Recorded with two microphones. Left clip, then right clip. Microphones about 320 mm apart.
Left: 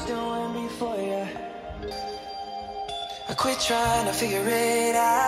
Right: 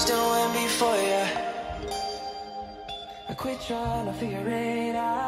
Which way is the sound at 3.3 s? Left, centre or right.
Left.